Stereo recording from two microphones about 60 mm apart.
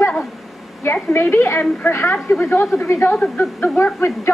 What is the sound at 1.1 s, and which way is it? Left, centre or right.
A woman's voice, left.